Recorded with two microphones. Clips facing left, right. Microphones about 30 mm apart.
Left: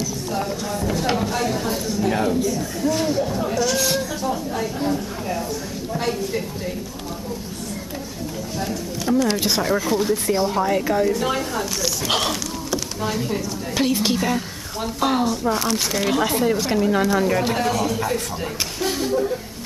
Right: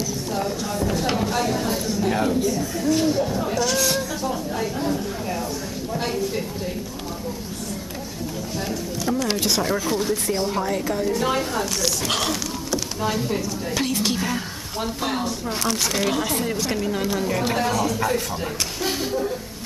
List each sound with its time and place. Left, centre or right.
0.3 s a sound: centre
2.8 s speech: centre
9.1 s speech: centre
10.7 s a woman's voice: centre
11.1 s speech: centre
12.1 s a sound: centre
13.7 s speech: centre